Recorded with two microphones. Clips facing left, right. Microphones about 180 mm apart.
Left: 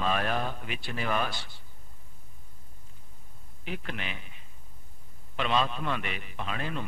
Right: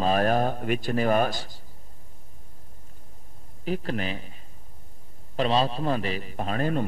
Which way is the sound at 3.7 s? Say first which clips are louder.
Right 9 dB; 35° right (ahead or behind).